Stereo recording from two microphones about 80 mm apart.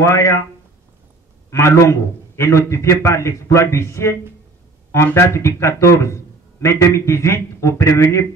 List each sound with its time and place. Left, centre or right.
0.0 s a man's voice: left
1.5 s a man's voice: left